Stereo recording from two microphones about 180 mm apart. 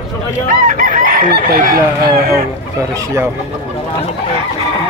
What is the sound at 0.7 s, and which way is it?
Chicken, 45° right (ahead or behind).